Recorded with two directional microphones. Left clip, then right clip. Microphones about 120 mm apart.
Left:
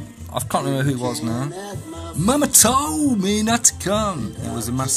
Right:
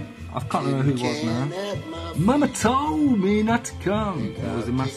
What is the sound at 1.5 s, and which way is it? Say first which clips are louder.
Music: right 3 dB; 20° right (ahead or behind).